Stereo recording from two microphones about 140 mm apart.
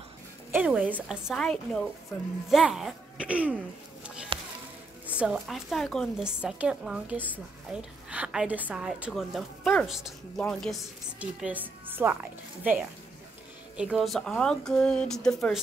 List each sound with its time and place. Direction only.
0.5 s a woman's voice: 10° right (ahead or behind)
4.3 s a sound: 40° right (ahead or behind)
5.0 s a woman's voice: 10° right (ahead or behind)
11.1 s a woman's voice: 10° right (ahead or behind)